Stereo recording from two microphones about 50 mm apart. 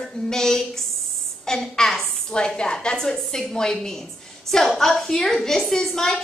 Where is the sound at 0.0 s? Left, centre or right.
Centre.